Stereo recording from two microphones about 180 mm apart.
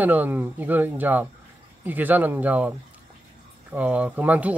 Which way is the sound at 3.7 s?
10° right (ahead or behind).